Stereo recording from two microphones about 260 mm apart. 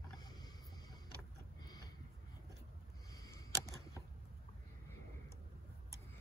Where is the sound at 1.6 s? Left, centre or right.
Centre.